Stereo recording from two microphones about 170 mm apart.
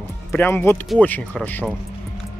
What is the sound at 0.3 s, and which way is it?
Speech, 10° left (ahead or behind).